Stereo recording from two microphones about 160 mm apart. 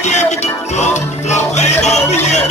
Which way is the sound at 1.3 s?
45° left (ahead or behind).